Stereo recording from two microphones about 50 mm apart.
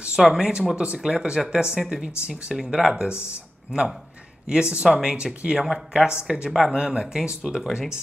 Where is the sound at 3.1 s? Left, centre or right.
Left.